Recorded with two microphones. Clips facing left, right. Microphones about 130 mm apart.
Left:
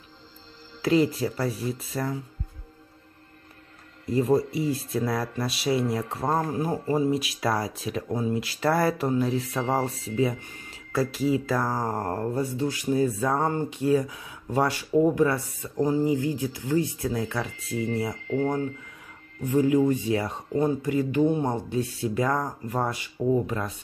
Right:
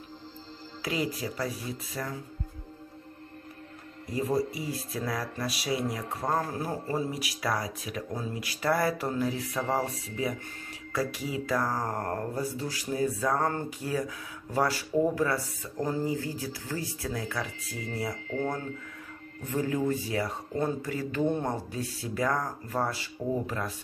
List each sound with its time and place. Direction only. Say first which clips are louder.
1.1 s speech: left 5 dB; 30° left (ahead or behind)
4.6 s speech: left 8 dB; 25° left (ahead or behind)
19.4 s speech: left 8 dB; 15° left (ahead or behind)